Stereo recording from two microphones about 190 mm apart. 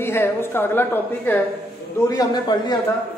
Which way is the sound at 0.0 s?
10° left (ahead or behind).